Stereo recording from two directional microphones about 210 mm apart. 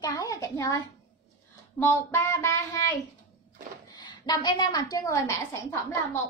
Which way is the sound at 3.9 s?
20° left (ahead or behind).